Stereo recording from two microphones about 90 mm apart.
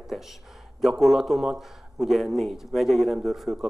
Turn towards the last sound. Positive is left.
turn(degrees=-5)  # may be behind; listen again after turning